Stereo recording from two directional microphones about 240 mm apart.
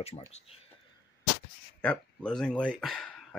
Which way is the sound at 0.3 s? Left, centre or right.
Left.